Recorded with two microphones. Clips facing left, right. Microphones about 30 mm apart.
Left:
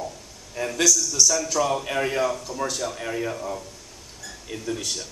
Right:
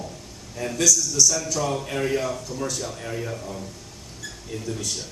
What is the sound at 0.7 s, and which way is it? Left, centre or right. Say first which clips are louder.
A man's voice: even; left.